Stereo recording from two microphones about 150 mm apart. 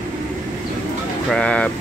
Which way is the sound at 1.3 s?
5° left (ahead or behind).